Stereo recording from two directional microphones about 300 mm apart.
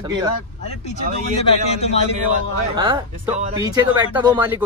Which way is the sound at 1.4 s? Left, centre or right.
Left.